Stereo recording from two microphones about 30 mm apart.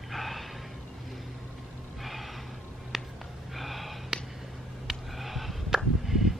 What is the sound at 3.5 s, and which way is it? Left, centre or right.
Gasp, centre.